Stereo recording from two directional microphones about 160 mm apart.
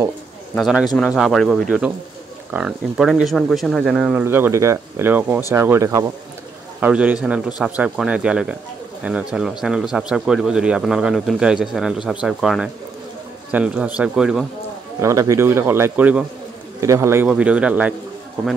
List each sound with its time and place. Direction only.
0.6 s speech: centre (ahead or behind); by 6.1 s 20° right (ahead or behind)
6.8 s speech: 10° right (ahead or behind)
15.0 s speech: 20° right (ahead or behind)